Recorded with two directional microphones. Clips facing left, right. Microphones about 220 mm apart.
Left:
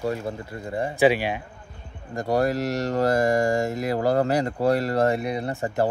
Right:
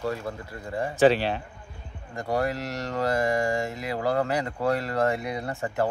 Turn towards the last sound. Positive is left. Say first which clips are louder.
# left 3 dB
turn(degrees=30)  # may be behind; listen again after turning